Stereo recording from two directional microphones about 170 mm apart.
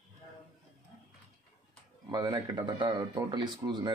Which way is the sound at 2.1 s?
25° right (ahead or behind).